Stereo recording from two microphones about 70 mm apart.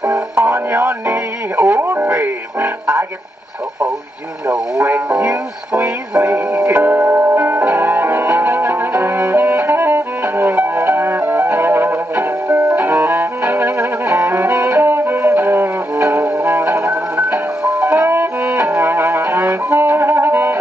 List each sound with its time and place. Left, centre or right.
0.1 s music: right
4.5 s radio: right
12.6 s music: right